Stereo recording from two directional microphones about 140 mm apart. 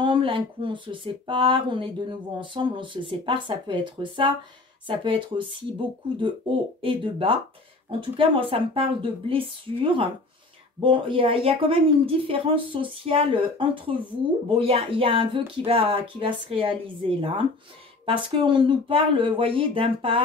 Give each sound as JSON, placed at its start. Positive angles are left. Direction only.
{"t": 0.0, "sound": "a woman's voice", "side_deg": -35}